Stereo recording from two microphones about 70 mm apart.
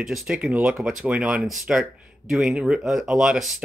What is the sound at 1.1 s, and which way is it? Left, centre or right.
Speech, centre.